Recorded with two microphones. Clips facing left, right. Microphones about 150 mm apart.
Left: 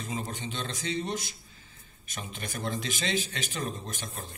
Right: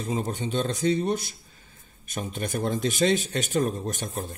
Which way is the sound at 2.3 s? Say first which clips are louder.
Right 7 dB; 50° right (ahead or behind).